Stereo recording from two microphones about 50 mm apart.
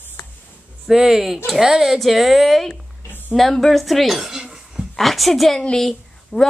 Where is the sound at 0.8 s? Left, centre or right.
Centre.